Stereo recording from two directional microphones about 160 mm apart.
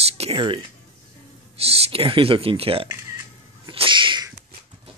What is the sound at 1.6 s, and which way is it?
Speech, 40° right (ahead or behind).